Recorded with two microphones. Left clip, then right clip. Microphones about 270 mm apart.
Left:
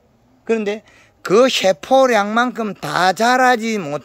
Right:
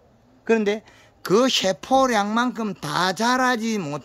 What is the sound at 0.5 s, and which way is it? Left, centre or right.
Speech, centre.